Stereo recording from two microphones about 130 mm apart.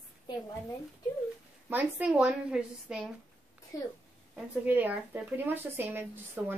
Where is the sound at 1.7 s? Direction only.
10° right (ahead or behind).